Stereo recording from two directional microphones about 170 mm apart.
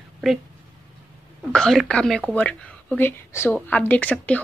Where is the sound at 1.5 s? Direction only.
Centre (ahead or behind).